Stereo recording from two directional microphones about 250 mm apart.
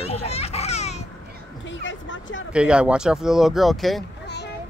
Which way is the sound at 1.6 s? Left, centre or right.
Left.